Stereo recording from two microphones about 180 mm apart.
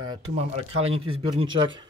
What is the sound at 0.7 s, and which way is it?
Speech, 35° right (ahead or behind).